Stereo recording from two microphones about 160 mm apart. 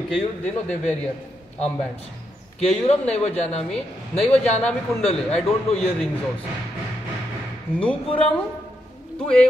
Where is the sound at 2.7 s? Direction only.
40° left (ahead or behind).